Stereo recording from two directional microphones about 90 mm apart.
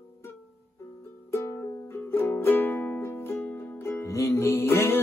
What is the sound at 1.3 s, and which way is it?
Music, 30° left (ahead or behind).